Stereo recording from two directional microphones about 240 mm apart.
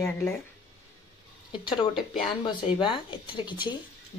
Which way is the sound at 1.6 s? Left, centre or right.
Left.